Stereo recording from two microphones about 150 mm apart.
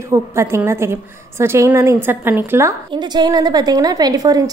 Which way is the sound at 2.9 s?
30° right (ahead or behind).